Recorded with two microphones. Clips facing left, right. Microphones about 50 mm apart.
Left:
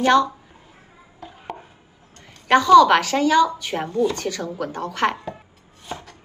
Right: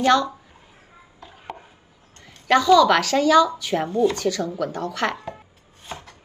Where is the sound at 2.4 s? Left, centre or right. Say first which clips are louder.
Left 3 dB; left.